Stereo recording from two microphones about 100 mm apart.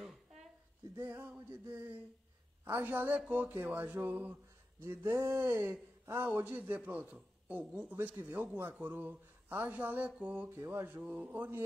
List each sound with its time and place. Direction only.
0.0 s a sound: centre (ahead or behind)
1.0 s speech: 25° right (ahead or behind)
2.6 s speech: 25° right (ahead or behind)
4.8 s speech: 30° right (ahead or behind); by 10.5 s 15° right (ahead or behind)
10.5 s speech: 25° right (ahead or behind)